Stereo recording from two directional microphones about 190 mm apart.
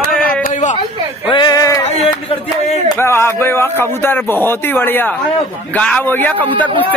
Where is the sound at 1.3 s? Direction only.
20° left (ahead or behind).